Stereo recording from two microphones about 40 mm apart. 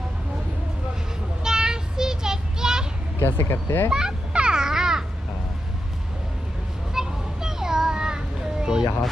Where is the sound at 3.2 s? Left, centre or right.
Left.